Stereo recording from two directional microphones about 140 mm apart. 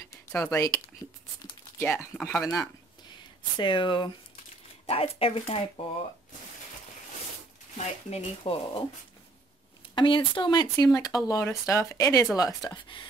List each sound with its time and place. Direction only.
0.3 s speech: 20° left (ahead or behind)
1.8 s speech: 10° left (ahead or behind)
3.5 s speech: 35° left (ahead or behind)
7.7 s speech: 45° left (ahead or behind)
9.9 s speech: 35° left (ahead or behind)